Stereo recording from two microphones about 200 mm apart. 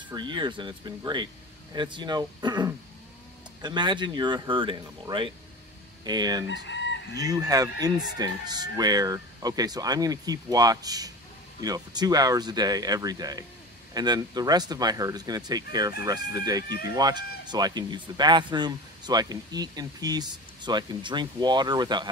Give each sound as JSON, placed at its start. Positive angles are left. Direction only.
{"t": 0.1, "sound": "speech", "side_deg": -20}
{"t": 6.5, "sound": "chicken", "side_deg": 65}
{"t": 7.2, "sound": "speech", "side_deg": -20}